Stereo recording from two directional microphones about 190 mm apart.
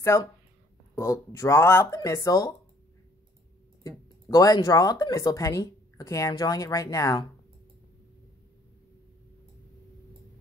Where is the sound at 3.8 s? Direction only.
20° left (ahead or behind).